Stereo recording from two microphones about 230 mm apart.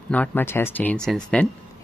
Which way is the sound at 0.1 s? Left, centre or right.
Centre.